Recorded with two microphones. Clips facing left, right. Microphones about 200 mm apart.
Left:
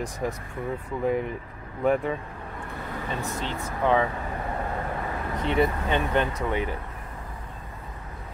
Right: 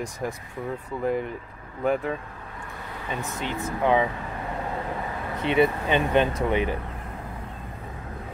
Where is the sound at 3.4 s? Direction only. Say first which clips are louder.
Right 2 dB; 15° right (ahead or behind).